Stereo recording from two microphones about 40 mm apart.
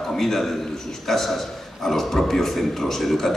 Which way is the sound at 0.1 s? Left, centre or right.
Centre.